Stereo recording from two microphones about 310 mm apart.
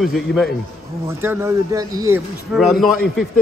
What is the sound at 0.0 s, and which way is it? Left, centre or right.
A man's voice, centre.